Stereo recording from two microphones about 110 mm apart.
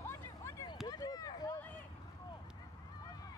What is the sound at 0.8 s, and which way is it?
Run, 35° left (ahead or behind).